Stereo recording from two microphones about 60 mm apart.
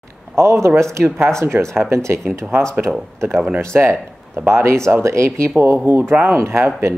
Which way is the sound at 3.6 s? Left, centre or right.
Right.